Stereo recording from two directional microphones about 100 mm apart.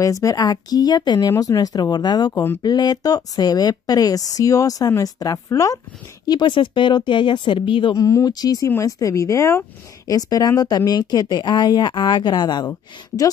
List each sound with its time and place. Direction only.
0.0 s speech: 35° left (ahead or behind)
6.2 s speech: 50° left (ahead or behind)
7.9 s speech: 35° left (ahead or behind)